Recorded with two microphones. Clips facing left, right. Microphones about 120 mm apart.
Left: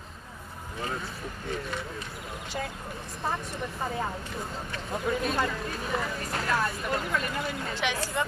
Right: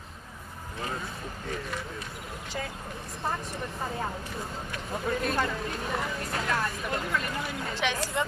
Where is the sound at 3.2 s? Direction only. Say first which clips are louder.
Left 1 dB; centre (ahead or behind).